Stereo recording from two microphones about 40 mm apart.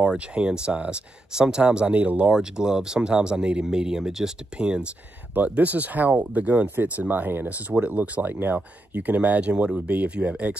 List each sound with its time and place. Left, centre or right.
0.0 s speech: right
2.3 s speech: centre
5.3 s speech: right
7.8 s speech: right
8.2 s speech: right
8.5 s speech: right